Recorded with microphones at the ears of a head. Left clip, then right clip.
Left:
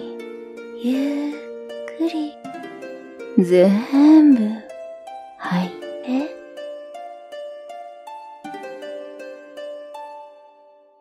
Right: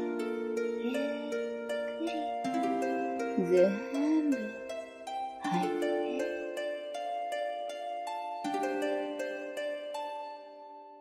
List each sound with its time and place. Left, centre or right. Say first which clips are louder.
0.8 s music: left 10 dB; left
3.3 s speech: left 12 dB; left
5.4 s music: left 5 dB; left